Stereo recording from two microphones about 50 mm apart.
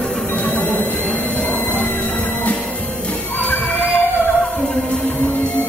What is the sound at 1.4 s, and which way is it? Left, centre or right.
Music, left.